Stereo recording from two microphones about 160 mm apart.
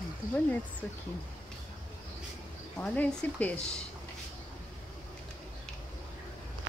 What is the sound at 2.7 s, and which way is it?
A woman's voice, 10° left (ahead or behind).